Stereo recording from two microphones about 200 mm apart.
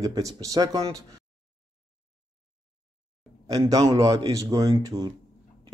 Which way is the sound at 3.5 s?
20° right (ahead or behind).